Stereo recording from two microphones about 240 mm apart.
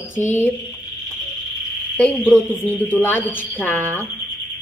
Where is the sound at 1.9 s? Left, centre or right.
Centre.